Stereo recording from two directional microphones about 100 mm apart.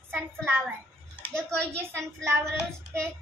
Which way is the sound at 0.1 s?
20° right (ahead or behind).